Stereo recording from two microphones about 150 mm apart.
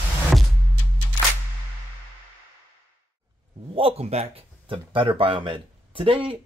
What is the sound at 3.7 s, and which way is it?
Speech, 40° right (ahead or behind).